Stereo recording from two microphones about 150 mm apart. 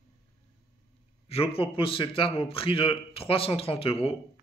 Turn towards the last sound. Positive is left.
turn(degrees=40)  # may be behind; listen again after turning